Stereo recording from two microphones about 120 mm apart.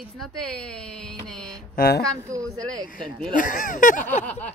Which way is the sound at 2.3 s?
30° right (ahead or behind).